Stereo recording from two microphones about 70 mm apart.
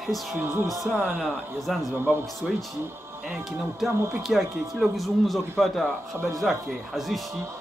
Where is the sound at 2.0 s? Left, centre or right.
Right.